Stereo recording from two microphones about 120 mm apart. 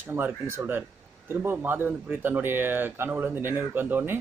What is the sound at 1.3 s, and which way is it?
Speech, 15° right (ahead or behind).